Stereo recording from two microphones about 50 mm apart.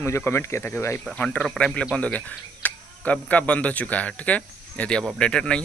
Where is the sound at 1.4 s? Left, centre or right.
Centre.